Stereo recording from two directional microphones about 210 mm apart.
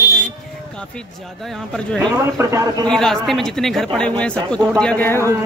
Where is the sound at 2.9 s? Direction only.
Centre (ahead or behind).